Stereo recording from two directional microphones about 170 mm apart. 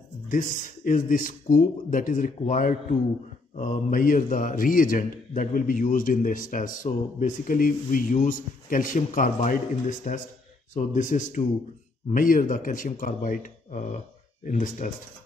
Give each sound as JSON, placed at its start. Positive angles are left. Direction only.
{"t": 0.3, "sound": "a man's voice", "side_deg": 50}